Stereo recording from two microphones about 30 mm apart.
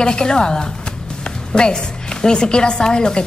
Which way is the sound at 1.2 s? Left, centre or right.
Left.